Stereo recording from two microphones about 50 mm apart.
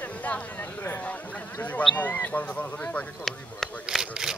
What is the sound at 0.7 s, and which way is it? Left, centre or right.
Speech, left.